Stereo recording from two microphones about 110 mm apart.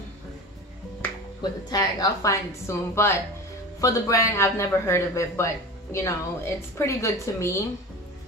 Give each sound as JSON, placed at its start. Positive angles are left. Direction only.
{"t": 1.4, "sound": "a man's voice", "side_deg": 35}